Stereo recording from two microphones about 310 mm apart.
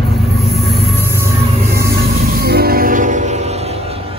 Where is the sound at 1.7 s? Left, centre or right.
Right.